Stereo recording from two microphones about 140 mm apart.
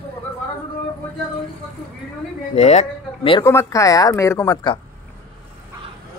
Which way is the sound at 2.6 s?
50° left (ahead or behind).